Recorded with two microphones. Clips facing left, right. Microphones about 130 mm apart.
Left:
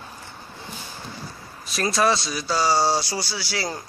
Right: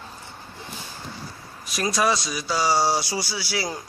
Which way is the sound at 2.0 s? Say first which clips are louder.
Left 2 dB; centre (ahead or behind).